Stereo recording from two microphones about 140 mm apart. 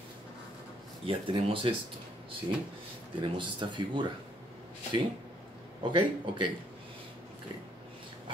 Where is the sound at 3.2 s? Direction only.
35° right (ahead or behind).